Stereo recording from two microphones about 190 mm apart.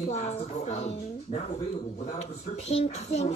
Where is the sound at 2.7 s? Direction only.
35° left (ahead or behind).